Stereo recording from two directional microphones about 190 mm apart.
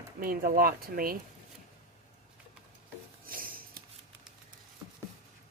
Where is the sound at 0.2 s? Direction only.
50° right (ahead or behind).